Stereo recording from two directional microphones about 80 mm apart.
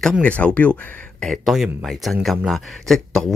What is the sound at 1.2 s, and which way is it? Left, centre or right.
A man's voice, centre.